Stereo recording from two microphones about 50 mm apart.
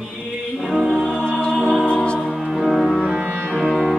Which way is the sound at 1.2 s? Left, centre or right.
Centre.